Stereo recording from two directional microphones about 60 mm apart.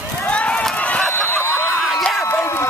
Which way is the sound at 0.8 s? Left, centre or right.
Left.